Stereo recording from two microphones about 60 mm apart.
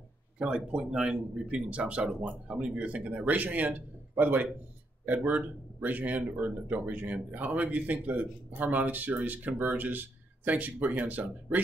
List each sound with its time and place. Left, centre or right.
0.4 s speech: centre